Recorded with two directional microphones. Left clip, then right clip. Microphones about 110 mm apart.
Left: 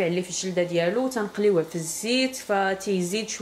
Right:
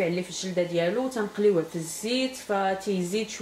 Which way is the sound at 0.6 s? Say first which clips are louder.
Left 2 dB; 30° left (ahead or behind).